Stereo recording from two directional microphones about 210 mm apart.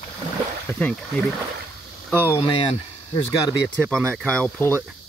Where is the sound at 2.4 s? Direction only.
25° left (ahead or behind).